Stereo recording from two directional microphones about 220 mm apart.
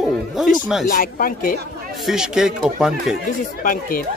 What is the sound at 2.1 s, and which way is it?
Speech, centre (ahead or behind).